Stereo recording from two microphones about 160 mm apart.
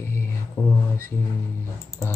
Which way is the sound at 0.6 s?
25° left (ahead or behind).